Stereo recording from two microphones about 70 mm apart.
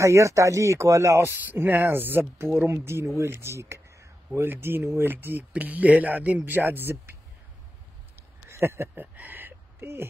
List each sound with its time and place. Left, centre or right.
0.0 s speech: right
1.2 s speech: right
8.5 s a sound: right